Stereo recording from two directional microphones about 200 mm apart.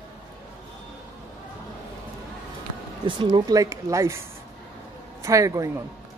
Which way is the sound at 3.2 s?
25° right (ahead or behind).